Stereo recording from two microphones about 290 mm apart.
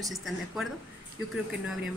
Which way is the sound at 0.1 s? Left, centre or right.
Centre.